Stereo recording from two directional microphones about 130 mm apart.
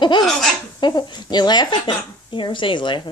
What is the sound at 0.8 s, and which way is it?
Speech, 35° left (ahead or behind).